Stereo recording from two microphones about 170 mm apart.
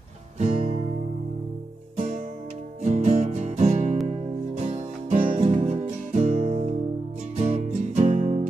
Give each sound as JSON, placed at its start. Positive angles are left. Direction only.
{"t": 0.4, "sound": "guitar", "side_deg": -40}
{"t": 2.0, "sound": "music", "side_deg": -40}